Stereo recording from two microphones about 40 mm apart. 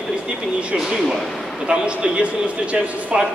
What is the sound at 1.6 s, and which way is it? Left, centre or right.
Speech, right.